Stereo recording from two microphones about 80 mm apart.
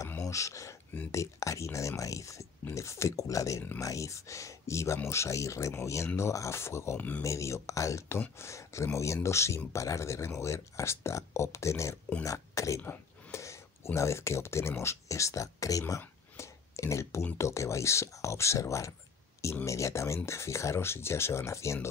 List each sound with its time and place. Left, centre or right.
0.2 s speech: left
7.0 s speech: left
7.2 s speech: left
12.8 s a sound: left
13.4 s speech: left